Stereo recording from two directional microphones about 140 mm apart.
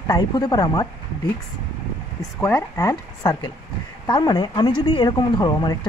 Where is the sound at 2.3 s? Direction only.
20° left (ahead or behind).